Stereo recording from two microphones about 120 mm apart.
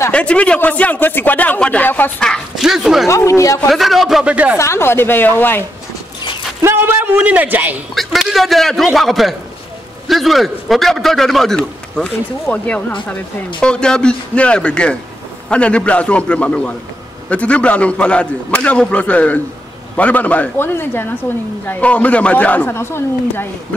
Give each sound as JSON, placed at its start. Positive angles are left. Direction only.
{"t": 0.1, "sound": "speech", "side_deg": 10}
{"t": 3.1, "sound": "a woman's voice", "side_deg": 25}
{"t": 3.7, "sound": "a man's voice", "side_deg": 0}
{"t": 4.6, "sound": "a woman's voice", "side_deg": 20}
{"t": 6.6, "sound": "a man's voice", "side_deg": -20}
{"t": 7.9, "sound": "a man's voice", "side_deg": 0}